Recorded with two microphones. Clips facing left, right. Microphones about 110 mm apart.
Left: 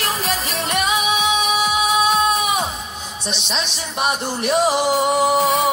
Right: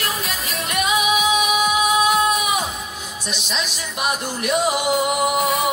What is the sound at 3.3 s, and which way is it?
Music, 25° left (ahead or behind).